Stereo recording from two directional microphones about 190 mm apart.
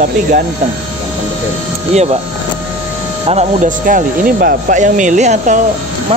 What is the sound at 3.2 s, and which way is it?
Speech, 40° right (ahead or behind).